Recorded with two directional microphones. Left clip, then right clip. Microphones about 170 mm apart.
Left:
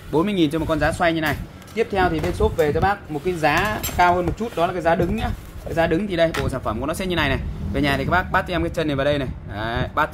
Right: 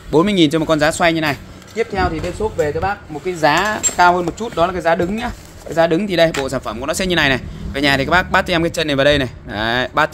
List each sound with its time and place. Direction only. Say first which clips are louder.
0.1 s speech: right 6 dB; 45° right (ahead or behind)
1.8 s speech: right 2 dB; 20° right (ahead or behind)
2.5 s speech: right 2 dB; 10° left (ahead or behind)
3.5 s speech: right 5 dB; 45° right (ahead or behind)